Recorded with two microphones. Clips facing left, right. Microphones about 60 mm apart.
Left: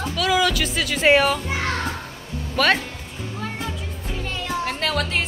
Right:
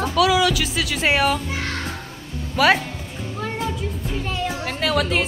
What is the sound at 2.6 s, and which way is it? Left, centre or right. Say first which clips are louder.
Speech: right 3 dB; centre.